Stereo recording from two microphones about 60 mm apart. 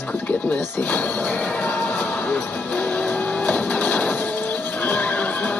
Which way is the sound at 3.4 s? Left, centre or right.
Left.